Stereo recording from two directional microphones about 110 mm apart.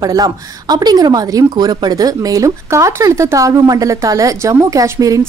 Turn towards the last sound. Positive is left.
turn(degrees=-30)  # may be behind; listen again after turning